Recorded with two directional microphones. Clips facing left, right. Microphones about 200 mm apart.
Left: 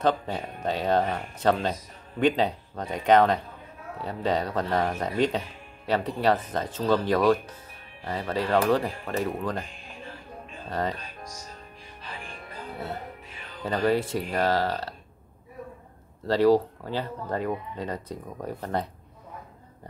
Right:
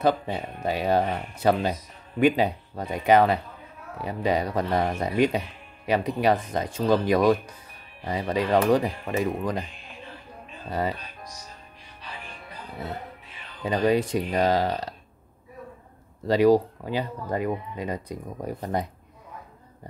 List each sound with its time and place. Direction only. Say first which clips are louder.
0.0 s speech: right 2 dB; 10° right (ahead or behind)
10.7 s speech: right 2 dB; 10° right (ahead or behind)
13.7 s speech: right 2 dB; 15° right (ahead or behind)
16.3 s speech: right 2 dB; 15° right (ahead or behind)